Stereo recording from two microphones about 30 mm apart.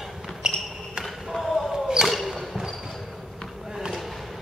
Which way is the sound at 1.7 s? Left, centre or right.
Centre.